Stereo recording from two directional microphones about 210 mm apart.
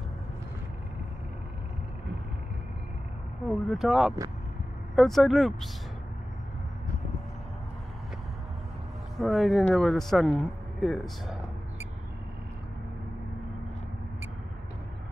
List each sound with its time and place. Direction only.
3.4 s speech: centre (ahead or behind)
9.1 s speech: centre (ahead or behind)